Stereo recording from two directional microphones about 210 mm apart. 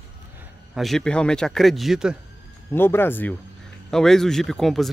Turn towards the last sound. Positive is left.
turn(degrees=0)  # may be behind; listen again after turning